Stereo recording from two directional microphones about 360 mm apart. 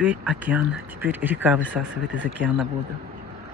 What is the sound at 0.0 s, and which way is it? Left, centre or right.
Speech, centre.